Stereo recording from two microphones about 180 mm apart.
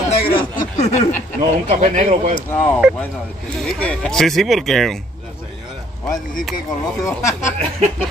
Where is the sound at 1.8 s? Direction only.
35° right (ahead or behind).